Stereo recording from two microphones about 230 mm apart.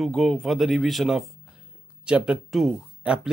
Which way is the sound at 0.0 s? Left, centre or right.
Centre.